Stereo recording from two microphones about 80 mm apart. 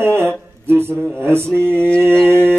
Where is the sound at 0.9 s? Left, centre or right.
Centre.